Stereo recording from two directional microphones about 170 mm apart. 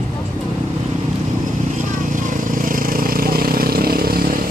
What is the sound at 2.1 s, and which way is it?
Vehicle, 50° right (ahead or behind).